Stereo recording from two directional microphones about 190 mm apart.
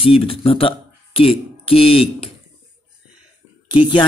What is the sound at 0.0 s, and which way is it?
Speech, 30° left (ahead or behind).